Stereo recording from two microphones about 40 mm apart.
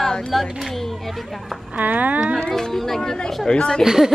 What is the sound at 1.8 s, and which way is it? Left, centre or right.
Speech, right.